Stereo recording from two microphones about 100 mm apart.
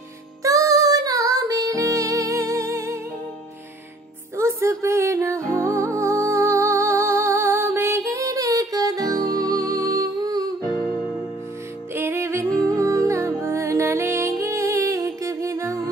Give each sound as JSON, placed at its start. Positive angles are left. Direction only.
{"t": 0.4, "sound": "music", "side_deg": -35}
{"t": 4.4, "sound": "music", "side_deg": -30}
{"t": 10.6, "sound": "music", "side_deg": 45}
{"t": 11.9, "sound": "music", "side_deg": -25}